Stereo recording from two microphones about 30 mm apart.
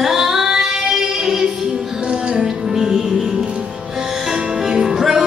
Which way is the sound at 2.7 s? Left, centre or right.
Centre.